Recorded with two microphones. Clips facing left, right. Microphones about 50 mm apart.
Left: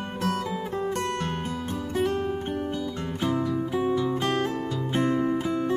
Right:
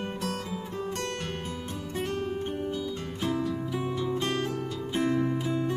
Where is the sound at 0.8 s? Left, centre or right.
Left.